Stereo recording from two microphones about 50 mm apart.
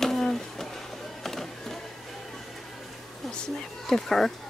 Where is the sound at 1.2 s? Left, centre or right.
Centre.